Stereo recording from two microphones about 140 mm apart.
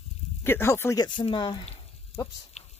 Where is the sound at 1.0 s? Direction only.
35° left (ahead or behind).